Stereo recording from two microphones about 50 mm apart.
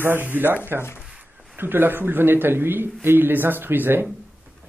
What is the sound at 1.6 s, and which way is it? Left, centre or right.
Speech, right.